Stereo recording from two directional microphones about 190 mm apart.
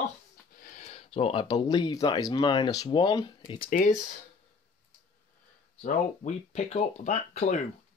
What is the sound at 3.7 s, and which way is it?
Speech, 45° left (ahead or behind).